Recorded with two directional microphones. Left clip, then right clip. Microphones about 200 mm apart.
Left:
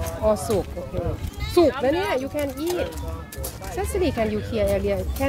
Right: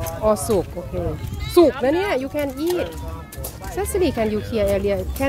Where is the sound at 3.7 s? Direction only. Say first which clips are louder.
Right 3 dB; 30° right (ahead or behind).